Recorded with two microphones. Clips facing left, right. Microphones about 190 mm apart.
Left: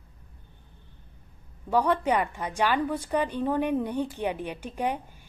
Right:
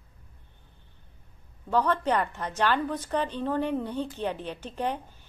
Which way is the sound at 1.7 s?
10° left (ahead or behind).